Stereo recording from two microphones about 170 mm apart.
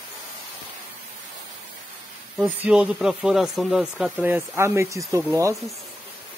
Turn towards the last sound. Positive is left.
turn(degrees=-20)  # may be behind; listen again after turning